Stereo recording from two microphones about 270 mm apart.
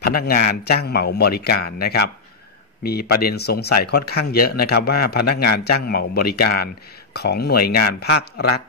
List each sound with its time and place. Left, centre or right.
0.0 s speech: left